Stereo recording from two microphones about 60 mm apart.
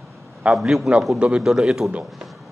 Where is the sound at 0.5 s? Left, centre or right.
Centre.